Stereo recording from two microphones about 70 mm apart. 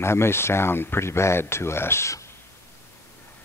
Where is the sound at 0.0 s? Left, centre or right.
Left.